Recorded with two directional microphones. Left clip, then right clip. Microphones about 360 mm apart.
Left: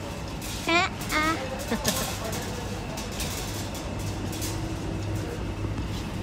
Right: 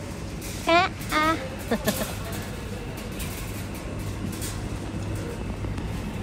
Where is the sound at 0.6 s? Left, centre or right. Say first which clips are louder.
Right 4 dB; centre.